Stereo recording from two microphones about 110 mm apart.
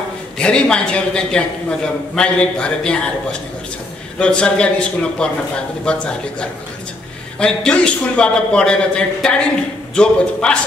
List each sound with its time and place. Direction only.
0.4 s a man's voice: 10° left (ahead or behind)
7.3 s a man's voice: 10° left (ahead or behind)